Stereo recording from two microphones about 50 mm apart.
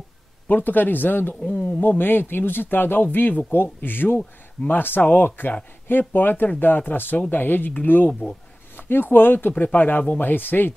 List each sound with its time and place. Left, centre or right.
0.5 s speech: left
8.1 s speech: centre
8.7 s speech: left